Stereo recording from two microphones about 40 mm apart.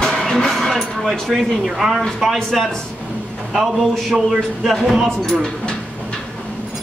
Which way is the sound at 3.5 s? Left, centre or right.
Centre.